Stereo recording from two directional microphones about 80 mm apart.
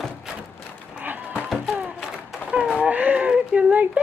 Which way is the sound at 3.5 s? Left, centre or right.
Right.